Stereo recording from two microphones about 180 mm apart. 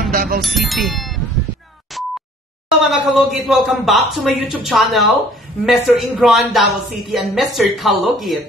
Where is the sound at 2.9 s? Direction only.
Centre (ahead or behind).